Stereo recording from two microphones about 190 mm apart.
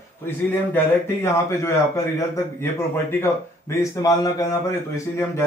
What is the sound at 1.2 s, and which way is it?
A man's voice, 15° left (ahead or behind).